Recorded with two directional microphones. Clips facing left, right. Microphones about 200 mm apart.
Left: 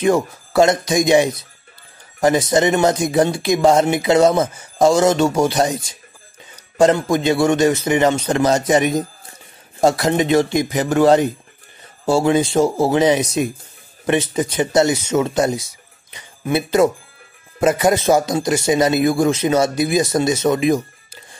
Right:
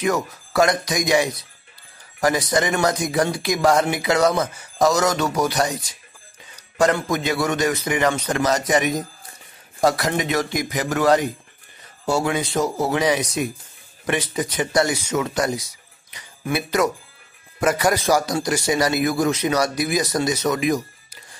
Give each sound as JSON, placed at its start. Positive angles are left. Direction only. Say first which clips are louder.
{"t": 0.0, "sound": "speech", "louder": "left 6 dB", "side_deg": 25}